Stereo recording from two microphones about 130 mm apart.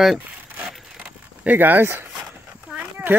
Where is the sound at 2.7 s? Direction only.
15° right (ahead or behind).